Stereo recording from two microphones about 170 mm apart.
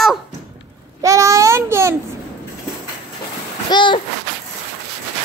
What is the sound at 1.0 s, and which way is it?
Speech, 20° right (ahead or behind).